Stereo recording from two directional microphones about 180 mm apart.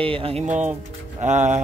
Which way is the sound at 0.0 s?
30° right (ahead or behind).